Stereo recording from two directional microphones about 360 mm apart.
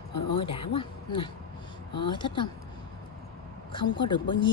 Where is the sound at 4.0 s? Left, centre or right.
Centre.